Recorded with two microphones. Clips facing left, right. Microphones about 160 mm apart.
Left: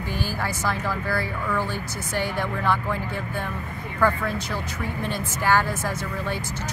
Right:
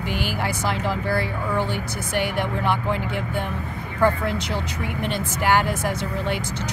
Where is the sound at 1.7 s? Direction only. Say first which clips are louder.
Right 3 dB; 70° right (ahead or behind).